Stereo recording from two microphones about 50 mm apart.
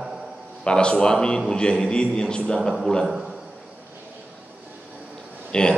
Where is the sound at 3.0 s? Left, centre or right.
Centre.